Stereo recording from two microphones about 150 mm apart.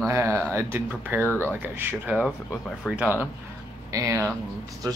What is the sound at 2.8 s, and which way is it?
Speech, 10° left (ahead or behind).